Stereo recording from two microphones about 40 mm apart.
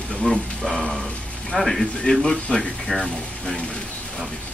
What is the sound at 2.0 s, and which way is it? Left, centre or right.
Speech, centre.